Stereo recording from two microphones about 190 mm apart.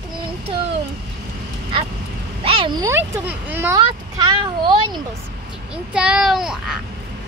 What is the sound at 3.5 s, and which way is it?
Speech, 10° right (ahead or behind).